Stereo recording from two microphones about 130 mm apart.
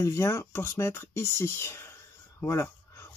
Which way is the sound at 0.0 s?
25° left (ahead or behind).